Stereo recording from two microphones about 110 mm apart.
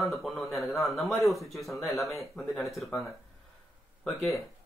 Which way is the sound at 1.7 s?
25° left (ahead or behind).